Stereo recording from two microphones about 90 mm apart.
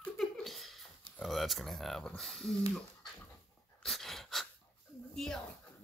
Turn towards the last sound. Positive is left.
turn(degrees=5)  # may be behind; listen again after turning